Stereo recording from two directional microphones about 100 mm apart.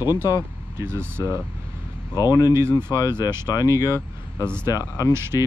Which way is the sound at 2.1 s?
40° left (ahead or behind).